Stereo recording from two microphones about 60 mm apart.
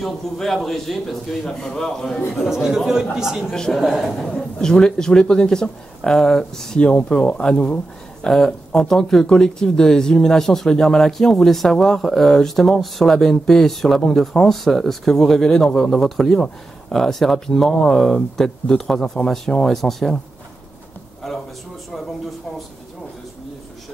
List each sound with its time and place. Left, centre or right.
0.0 s speech: centre
3.5 s speech: centre
3.8 s speech: centre
8.3 s speech: centre
21.2 s speech: centre